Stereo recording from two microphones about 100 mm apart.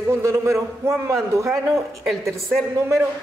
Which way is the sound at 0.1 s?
25° right (ahead or behind).